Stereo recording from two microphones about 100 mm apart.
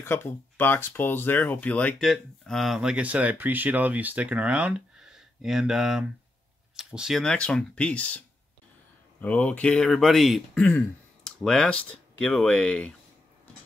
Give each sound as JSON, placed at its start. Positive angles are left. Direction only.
{"t": 0.0, "sound": "speech", "side_deg": 20}
{"t": 2.0, "sound": "speech", "side_deg": 5}
{"t": 7.2, "sound": "speech", "side_deg": 10}
{"t": 9.2, "sound": "speech", "side_deg": 15}